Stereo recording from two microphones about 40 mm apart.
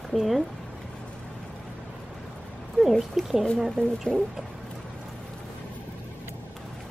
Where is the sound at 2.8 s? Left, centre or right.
Left.